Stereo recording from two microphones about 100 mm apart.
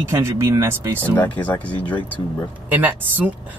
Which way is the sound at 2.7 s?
20° right (ahead or behind).